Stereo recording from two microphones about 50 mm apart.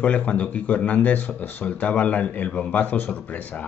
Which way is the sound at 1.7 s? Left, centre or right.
Left.